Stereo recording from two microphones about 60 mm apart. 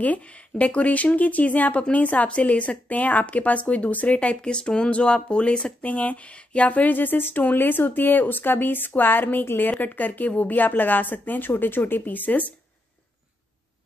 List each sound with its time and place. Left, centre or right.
0.0 s speech: left